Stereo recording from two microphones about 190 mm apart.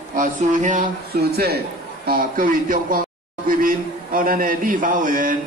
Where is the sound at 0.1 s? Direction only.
45° right (ahead or behind).